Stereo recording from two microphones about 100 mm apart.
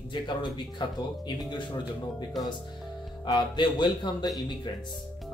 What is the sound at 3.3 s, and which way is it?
Speech, 45° left (ahead or behind).